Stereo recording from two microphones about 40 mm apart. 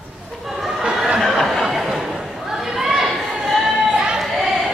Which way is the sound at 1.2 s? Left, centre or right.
Centre.